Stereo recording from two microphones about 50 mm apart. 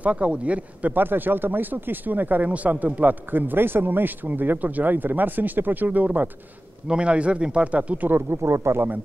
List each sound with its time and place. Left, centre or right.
0.0 s speech: right
0.9 s speech: right
6.9 s speech: right
8.1 s speech: right